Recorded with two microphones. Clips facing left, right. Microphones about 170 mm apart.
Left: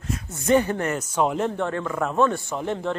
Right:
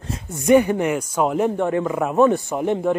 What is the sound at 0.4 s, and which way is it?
Speech, 15° right (ahead or behind).